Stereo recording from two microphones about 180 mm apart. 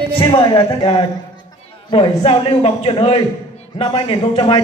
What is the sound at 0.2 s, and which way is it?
A man's voice, 25° left (ahead or behind).